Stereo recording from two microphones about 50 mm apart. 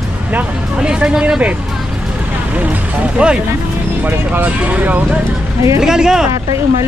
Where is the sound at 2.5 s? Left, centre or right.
Right.